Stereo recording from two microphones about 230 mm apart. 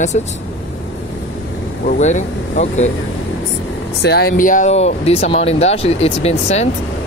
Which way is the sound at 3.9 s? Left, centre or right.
Left.